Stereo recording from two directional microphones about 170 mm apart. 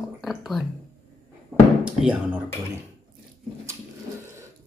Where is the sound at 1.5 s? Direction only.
5° right (ahead or behind).